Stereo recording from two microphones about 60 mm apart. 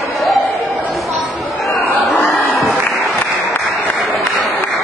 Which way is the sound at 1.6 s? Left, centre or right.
Centre.